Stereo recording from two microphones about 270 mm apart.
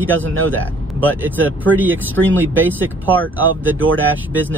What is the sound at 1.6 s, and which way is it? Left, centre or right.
Speech, centre.